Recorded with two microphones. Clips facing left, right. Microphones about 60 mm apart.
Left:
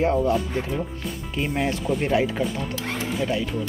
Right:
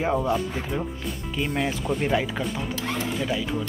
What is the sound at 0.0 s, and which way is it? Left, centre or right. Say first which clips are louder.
Speech: left 3 dB; centre.